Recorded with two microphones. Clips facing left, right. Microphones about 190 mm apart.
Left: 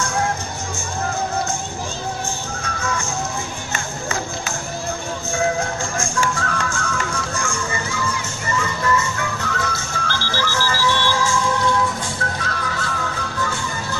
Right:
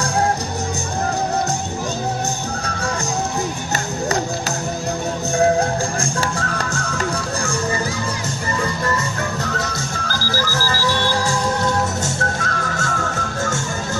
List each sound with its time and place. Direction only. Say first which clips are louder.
2.6 s music: left 2 dB; 35° right (ahead or behind)
3.7 s a sound: right 5 dB; 35° right (ahead or behind)
5.4 s music: right 6 dB; 35° right (ahead or behind)